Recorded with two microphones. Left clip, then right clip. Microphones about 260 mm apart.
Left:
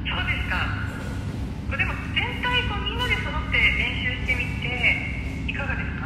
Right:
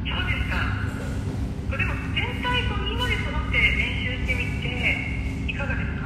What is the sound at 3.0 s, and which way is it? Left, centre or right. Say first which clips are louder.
Music: left 2 dB; centre.